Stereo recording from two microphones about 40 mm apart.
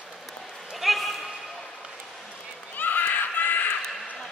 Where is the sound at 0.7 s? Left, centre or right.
Centre.